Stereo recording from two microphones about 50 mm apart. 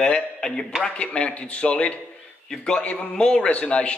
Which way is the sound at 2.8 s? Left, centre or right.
Left.